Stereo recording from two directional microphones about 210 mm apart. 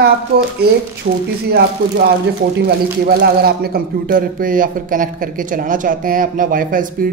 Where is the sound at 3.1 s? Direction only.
45° right (ahead or behind).